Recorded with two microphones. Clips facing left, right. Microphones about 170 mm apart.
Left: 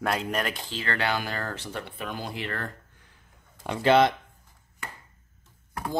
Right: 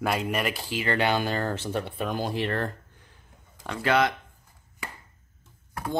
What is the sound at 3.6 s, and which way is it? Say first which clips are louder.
Speech: left 4 dB; 25° left (ahead or behind).